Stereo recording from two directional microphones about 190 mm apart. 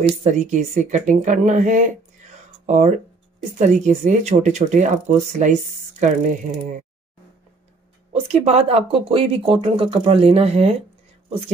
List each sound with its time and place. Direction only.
0.2 s speech: 40° right (ahead or behind)
8.1 s speech: 35° right (ahead or behind)